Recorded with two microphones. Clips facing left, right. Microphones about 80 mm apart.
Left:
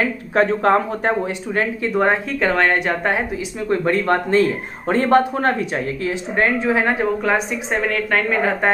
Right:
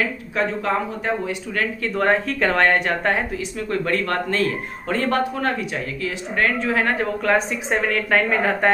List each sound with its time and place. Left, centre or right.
0.3 s speech: left
1.5 s a man's voice: left
2.4 s speech: centre
3.6 s a man's voice: left; by 8.7 s centre